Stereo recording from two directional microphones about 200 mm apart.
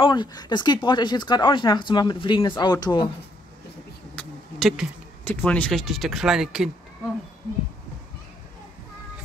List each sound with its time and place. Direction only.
0.0 s speech: 20° left (ahead or behind)
4.1 s speech: 5° left (ahead or behind)